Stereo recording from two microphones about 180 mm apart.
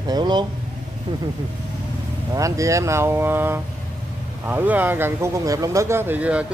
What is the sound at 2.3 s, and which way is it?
Speech, 15° right (ahead or behind).